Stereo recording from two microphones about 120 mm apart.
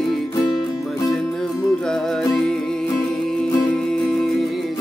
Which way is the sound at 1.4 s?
5° left (ahead or behind).